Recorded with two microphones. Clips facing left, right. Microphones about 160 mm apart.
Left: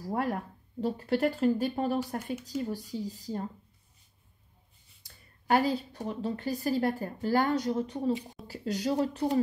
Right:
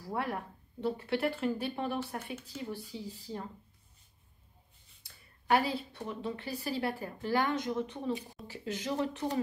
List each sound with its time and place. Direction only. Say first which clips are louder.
0.0 s speech: left 4 dB; 40° left (ahead or behind)
5.0 s speech: left 2 dB; 40° left (ahead or behind)